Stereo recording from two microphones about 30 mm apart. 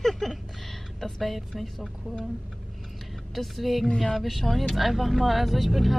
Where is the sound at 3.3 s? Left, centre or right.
Centre.